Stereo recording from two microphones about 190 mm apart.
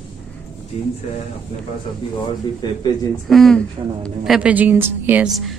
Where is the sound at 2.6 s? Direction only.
20° left (ahead or behind).